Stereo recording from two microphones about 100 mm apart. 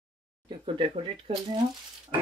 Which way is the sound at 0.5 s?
50° right (ahead or behind).